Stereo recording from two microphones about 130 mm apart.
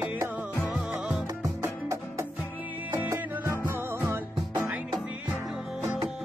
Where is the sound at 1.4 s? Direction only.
25° right (ahead or behind).